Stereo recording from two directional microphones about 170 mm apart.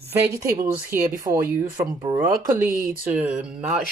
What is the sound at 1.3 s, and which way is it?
Speech, 20° right (ahead or behind).